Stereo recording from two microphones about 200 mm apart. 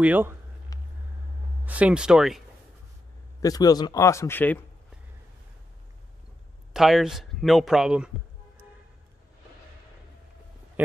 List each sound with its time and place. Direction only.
0.0 s speech: 10° right (ahead or behind)
1.7 s speech: 5° right (ahead or behind)
3.4 s a man's voice: 20° left (ahead or behind)
6.7 s speech: centre (ahead or behind)